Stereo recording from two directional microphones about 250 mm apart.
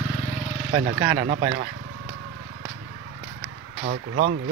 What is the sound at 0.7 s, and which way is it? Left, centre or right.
Speech, right.